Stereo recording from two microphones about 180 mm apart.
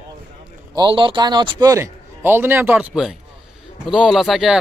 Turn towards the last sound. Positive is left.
turn(degrees=0)  # may be behind; listen again after turning